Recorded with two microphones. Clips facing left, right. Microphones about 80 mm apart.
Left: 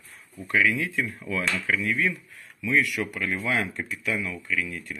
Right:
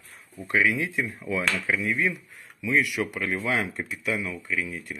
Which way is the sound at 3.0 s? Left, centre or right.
Right.